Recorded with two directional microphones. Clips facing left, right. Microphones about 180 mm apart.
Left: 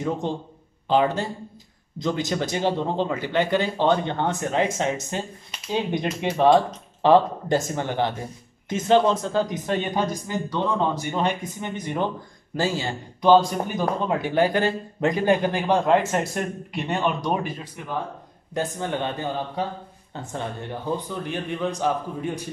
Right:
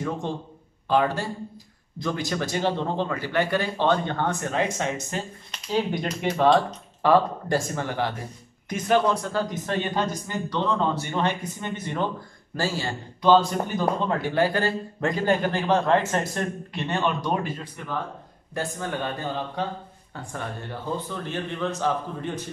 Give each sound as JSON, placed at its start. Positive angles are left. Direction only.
{"t": 0.8, "sound": "a man's voice", "side_deg": 20}
{"t": 5.5, "sound": "a sound", "side_deg": 5}
{"t": 6.3, "sound": "a man's voice", "side_deg": 15}